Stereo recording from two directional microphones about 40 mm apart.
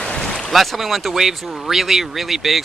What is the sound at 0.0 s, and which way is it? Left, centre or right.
Boat, left.